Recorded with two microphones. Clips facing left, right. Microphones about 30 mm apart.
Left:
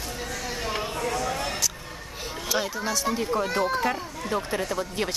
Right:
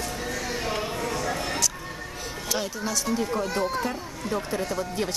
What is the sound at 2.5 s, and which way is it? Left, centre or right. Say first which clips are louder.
A woman's voice: left 2 dB; centre.